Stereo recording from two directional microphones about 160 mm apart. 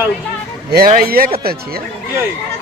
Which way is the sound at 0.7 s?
65° right (ahead or behind).